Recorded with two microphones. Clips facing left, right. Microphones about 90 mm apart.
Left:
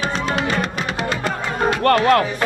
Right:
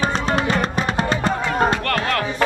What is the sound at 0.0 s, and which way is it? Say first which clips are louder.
Music: right 1 dB; 35° right (ahead or behind).